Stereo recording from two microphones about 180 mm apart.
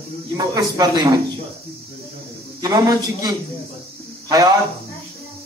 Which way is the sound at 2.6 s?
20° right (ahead or behind).